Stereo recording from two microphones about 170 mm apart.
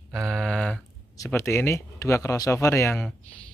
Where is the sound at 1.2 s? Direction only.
15° left (ahead or behind).